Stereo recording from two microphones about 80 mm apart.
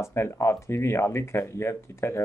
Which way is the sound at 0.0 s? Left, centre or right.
Left.